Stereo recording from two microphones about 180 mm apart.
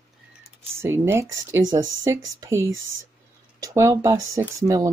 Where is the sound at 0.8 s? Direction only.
15° right (ahead or behind).